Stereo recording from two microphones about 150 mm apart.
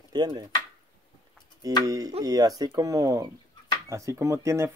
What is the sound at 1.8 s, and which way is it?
Speech, 25° right (ahead or behind).